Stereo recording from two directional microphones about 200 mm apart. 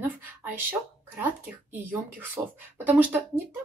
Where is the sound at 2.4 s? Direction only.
20° right (ahead or behind).